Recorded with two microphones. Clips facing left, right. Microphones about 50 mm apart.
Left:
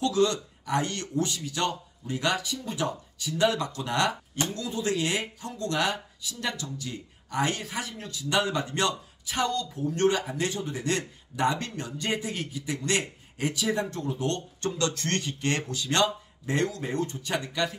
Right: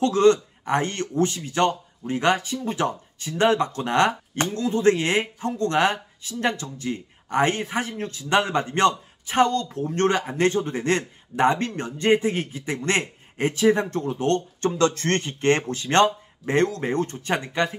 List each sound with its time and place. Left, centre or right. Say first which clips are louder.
0.0 s speech: right 7 dB; right